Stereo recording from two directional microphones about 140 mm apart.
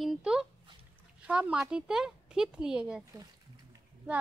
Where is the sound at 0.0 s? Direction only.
5° right (ahead or behind).